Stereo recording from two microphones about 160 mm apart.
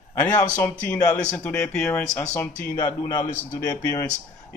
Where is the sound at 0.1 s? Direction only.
15° left (ahead or behind).